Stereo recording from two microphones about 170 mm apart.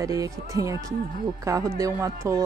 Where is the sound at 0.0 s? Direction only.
20° right (ahead or behind).